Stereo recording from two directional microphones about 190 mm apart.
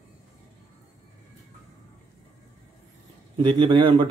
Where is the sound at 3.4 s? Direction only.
25° right (ahead or behind).